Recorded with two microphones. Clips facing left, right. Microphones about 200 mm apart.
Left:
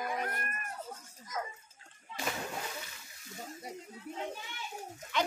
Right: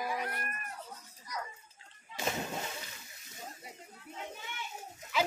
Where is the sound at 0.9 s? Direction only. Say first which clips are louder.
Left 2 dB; 50° left (ahead or behind).